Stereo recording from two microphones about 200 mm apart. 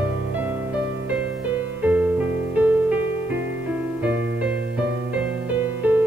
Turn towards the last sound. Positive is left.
turn(degrees=-10)  # may be behind; listen again after turning